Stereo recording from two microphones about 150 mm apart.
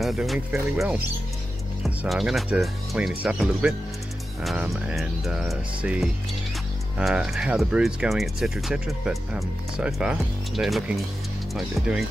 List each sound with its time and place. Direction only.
0.0 s speech: centre (ahead or behind)